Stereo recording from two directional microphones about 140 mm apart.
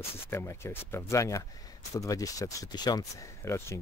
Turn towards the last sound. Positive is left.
turn(degrees=20)  # may be behind; listen again after turning